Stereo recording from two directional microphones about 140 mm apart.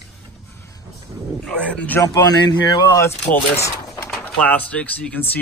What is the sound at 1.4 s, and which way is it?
Speech, 10° left (ahead or behind).